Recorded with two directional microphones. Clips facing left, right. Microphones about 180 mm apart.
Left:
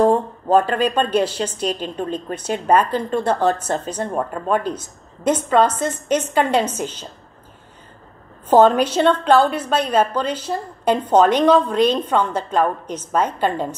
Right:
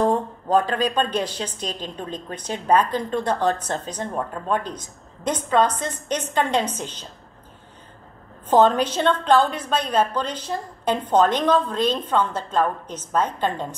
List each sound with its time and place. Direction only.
0.7 s a woman's voice: 5° left (ahead or behind)
8.5 s a woman's voice: 10° left (ahead or behind)